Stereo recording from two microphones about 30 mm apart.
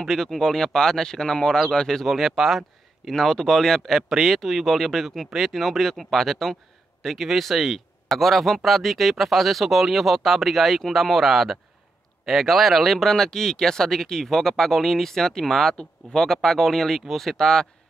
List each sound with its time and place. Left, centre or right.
0.0 s speech: centre
0.3 s speech: centre
2.0 s speech: centre
3.1 s speech: centre
4.1 s speech: centre
13.1 s speech: centre